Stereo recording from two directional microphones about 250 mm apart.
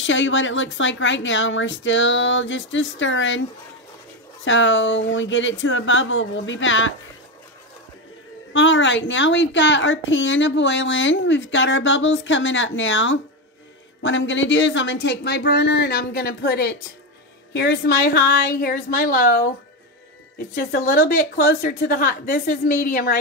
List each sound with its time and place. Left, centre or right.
0.0 s a woman's voice: left
4.5 s a woman's voice: left
8.5 s a woman's voice: left
20.5 s speech: left